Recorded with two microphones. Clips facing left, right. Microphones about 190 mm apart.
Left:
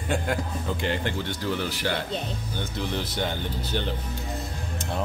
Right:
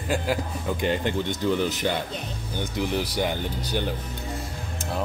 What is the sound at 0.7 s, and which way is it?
Speech, 15° right (ahead or behind).